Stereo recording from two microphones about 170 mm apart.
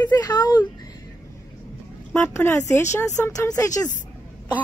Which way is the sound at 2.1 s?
15° left (ahead or behind).